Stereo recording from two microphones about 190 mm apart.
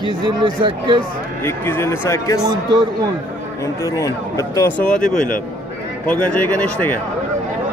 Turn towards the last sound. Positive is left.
turn(degrees=10)  # may be behind; listen again after turning